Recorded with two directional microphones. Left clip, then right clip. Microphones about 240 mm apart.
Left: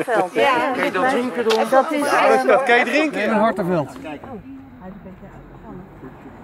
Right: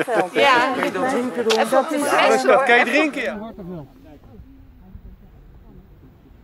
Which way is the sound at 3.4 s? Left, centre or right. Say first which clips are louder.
Left 17 dB; left.